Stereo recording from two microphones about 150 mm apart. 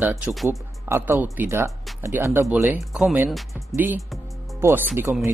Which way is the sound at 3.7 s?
15° right (ahead or behind).